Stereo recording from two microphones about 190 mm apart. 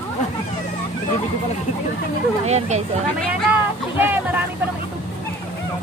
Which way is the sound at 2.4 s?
35° right (ahead or behind).